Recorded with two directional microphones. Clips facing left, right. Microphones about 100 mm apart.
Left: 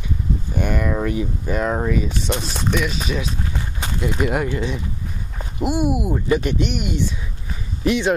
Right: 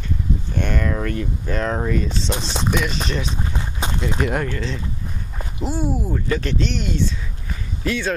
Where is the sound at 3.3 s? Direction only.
20° right (ahead or behind).